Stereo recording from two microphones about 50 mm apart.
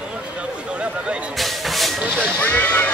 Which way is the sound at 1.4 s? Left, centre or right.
Centre.